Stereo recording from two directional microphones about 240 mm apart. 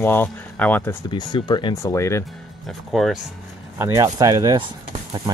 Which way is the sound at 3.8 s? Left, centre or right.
Centre.